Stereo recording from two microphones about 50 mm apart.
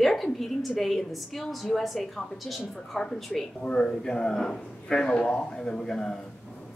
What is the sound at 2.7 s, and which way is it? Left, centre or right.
Speech, centre.